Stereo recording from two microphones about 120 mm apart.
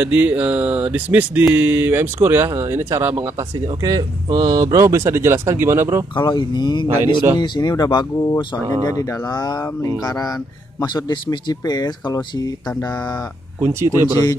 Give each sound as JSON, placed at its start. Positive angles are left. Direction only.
{"t": 0.0, "sound": "a sound", "side_deg": -15}
{"t": 0.9, "sound": "speech", "side_deg": -10}
{"t": 6.1, "sound": "speech", "side_deg": 40}
{"t": 13.6, "sound": "speech", "side_deg": -20}